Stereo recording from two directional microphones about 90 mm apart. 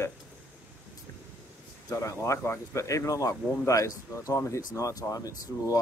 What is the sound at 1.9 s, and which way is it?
Speech, 35° left (ahead or behind).